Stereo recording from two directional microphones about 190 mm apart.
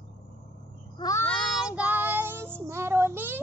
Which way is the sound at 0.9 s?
20° left (ahead or behind).